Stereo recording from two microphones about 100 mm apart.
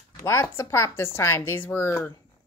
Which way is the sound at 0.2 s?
30° left (ahead or behind).